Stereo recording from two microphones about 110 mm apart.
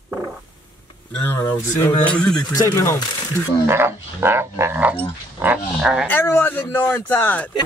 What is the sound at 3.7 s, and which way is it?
Speech, 20° right (ahead or behind).